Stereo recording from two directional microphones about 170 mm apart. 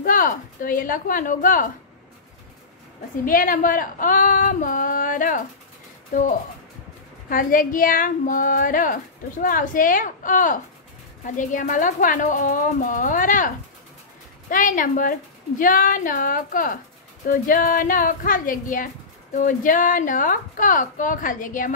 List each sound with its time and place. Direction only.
0.0 s speech: 55° left (ahead or behind)
3.3 s speech: 55° left (ahead or behind)
14.5 s speech: 50° left (ahead or behind)